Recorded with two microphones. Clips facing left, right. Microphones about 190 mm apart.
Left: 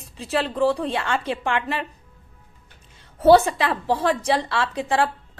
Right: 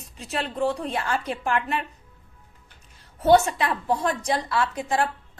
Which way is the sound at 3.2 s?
35° left (ahead or behind).